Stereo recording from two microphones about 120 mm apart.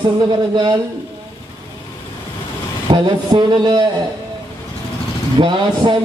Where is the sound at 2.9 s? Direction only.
40° right (ahead or behind).